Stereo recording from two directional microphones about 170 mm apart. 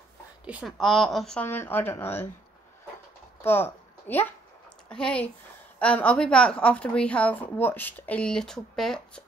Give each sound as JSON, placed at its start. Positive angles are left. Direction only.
{"t": 0.5, "sound": "a woman's voice", "side_deg": -5}
{"t": 3.4, "sound": "a woman's voice", "side_deg": 10}